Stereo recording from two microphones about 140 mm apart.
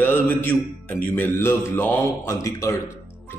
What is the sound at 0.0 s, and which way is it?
Speech, 15° left (ahead or behind).